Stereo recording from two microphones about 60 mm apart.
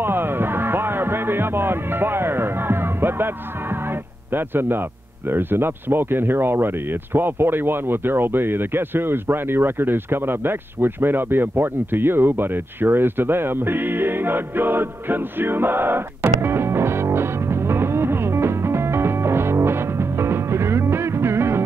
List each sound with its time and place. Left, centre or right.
0.0 s music: right
4.3 s a man's voice: right